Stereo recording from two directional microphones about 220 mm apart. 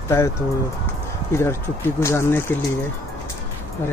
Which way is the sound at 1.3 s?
10° left (ahead or behind).